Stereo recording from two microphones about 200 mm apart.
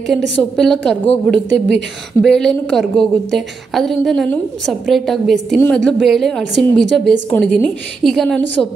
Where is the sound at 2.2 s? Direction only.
5° left (ahead or behind).